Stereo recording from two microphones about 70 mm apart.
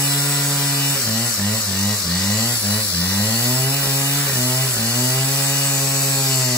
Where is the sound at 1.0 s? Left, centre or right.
Centre.